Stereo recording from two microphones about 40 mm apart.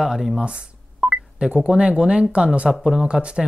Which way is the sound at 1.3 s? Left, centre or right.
Right.